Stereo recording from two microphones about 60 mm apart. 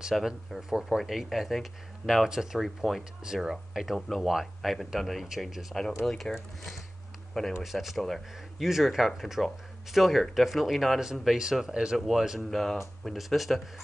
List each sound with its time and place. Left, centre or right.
0.1 s speech: centre
0.5 s speech: centre
6.0 s speech: centre
12.4 s speech: centre